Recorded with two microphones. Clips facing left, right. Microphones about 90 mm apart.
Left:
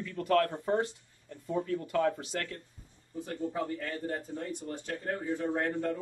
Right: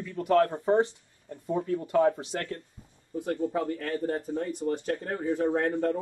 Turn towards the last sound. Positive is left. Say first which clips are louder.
# right 5 dB
turn(degrees=-55)  # may be behind; listen again after turning